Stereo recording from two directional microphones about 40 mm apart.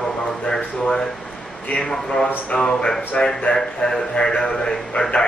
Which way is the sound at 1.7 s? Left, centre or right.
Centre.